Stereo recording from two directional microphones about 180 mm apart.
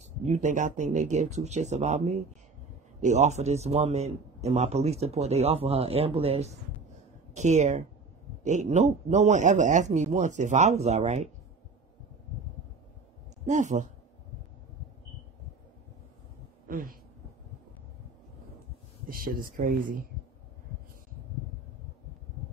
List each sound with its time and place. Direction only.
0.2 s a man's voice: 40° right (ahead or behind)
13.5 s speech: 45° right (ahead or behind)
16.6 s a sound: 55° right (ahead or behind)
19.0 s speech: 55° right (ahead or behind)